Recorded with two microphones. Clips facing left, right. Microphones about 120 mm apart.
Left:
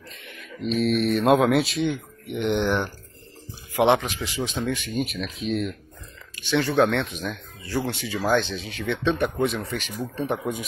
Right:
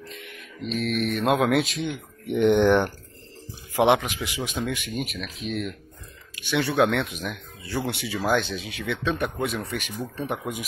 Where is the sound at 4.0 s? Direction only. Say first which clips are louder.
Left 2 dB; 10° right (ahead or behind).